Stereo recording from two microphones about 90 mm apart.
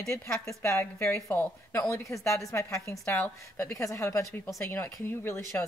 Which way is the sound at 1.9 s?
35° left (ahead or behind).